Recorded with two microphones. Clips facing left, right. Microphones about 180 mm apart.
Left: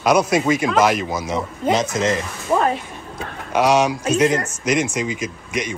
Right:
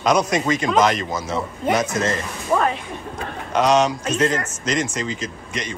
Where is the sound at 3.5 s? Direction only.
10° left (ahead or behind).